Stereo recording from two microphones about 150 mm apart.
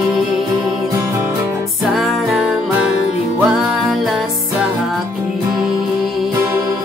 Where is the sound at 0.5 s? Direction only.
20° right (ahead or behind).